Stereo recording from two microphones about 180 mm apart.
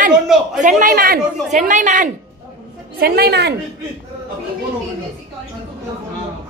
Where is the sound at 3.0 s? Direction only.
60° right (ahead or behind).